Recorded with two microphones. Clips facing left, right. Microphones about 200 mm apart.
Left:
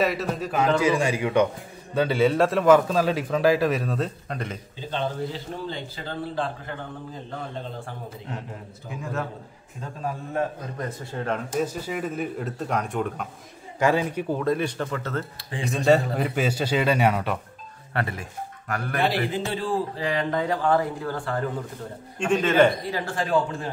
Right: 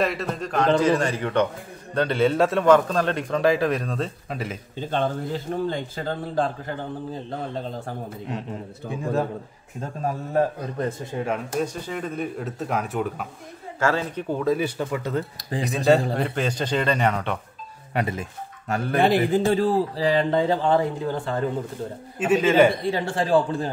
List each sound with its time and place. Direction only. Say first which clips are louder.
0.0 s a man's voice: even; centre (ahead or behind)
4.7 s a man's voice: right 4 dB; 50° right (ahead or behind); by 9.3 s 35° right (ahead or behind)
11.1 s speech: right 2 dB; 10° right (ahead or behind)
11.6 s a man's voice: even; 5° left (ahead or behind)
13.7 s a man's voice: left 2 dB; 15° left (ahead or behind)
14.3 s speech: right 3 dB; centre (ahead or behind)
15.3 s a man's voice: right 3 dB; 40° right (ahead or behind)
15.7 s a man's voice: right 1 dB; centre (ahead or behind)
17.9 s speech: right 3 dB; 20° right (ahead or behind)
19.3 s speech: right 7 dB; 40° right (ahead or behind); by 21.5 s 20° right (ahead or behind)
22.2 s speech: right 2 dB; 10° right (ahead or behind)
22.8 s speech: right 4 dB; 30° right (ahead or behind)